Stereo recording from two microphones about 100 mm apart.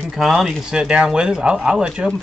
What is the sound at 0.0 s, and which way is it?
Speech, centre (ahead or behind).